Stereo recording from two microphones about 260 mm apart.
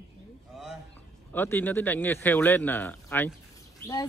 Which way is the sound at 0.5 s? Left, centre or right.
Centre.